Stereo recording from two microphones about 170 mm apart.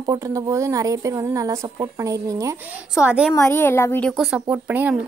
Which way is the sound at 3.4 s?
15° left (ahead or behind).